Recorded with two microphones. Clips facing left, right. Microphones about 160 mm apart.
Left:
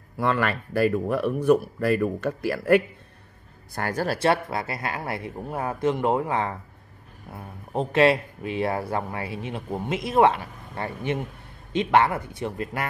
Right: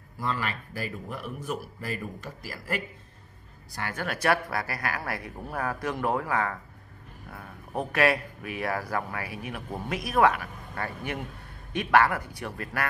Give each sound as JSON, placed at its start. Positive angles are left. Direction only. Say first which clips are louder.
{"t": 0.2, "sound": "a man's voice", "louder": "left 7 dB", "side_deg": 65}
{"t": 3.7, "sound": "speech", "louder": "left 7 dB", "side_deg": 40}